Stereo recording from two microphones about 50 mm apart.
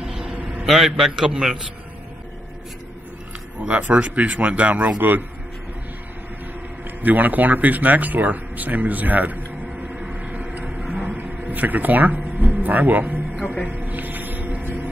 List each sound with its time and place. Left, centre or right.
0.0 s a sound: centre
3.6 s speech: right
7.0 s speech: right
10.2 s vehicle: right
11.1 s speech: right
13.7 s vehicle: right